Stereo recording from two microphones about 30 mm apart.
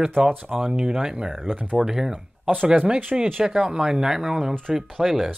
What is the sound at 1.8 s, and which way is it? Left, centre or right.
Speech, centre.